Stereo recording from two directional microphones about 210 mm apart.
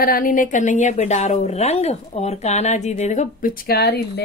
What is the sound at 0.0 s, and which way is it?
A woman's voice, 40° left (ahead or behind).